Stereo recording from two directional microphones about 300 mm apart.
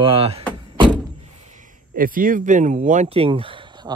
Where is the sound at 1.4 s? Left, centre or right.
Right.